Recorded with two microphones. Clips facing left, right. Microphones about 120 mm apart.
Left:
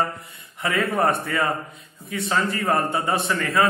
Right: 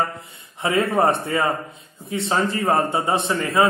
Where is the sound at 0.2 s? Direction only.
25° right (ahead or behind).